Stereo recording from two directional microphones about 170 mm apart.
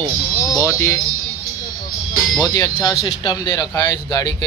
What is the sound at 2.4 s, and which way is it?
Speech, 20° left (ahead or behind).